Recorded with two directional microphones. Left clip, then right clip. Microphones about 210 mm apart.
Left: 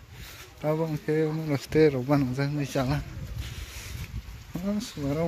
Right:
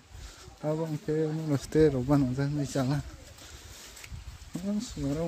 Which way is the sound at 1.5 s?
15° right (ahead or behind).